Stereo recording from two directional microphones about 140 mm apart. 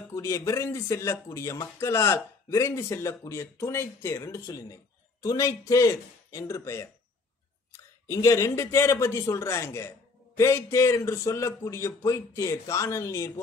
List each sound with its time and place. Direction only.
0.1 s speech: 20° left (ahead or behind)